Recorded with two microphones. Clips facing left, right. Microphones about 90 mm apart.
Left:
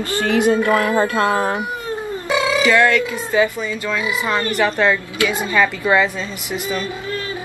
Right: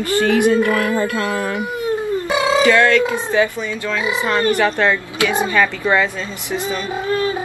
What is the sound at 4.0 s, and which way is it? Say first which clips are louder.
Speech: right 4 dB; 30° right (ahead or behind).